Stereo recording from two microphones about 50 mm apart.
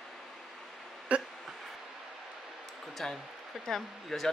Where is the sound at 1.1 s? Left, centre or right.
Right.